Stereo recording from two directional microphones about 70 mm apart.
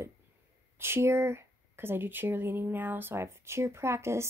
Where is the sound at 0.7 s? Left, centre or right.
Right.